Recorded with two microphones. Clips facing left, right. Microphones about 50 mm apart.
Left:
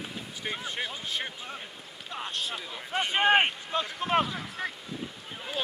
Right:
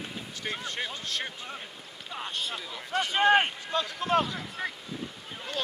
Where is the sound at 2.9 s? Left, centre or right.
Left.